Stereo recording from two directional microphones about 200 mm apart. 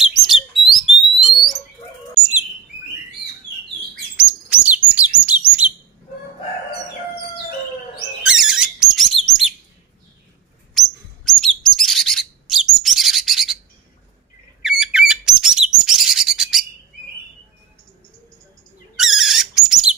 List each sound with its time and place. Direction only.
0.0 s bird: centre (ahead or behind)
4.2 s chirp: 5° right (ahead or behind)
8.2 s bird: centre (ahead or behind)
10.7 s bird: centre (ahead or behind)
14.6 s bird: centre (ahead or behind)
18.9 s rodents: centre (ahead or behind)